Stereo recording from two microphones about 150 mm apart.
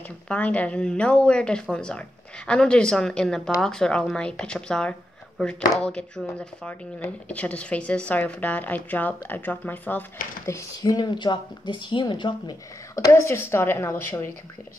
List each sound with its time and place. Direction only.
0.3 s speech: 10° left (ahead or behind)